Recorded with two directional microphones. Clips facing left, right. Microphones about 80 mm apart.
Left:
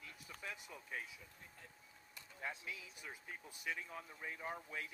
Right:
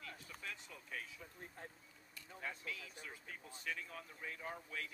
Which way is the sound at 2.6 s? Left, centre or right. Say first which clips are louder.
Right 1 dB; centre.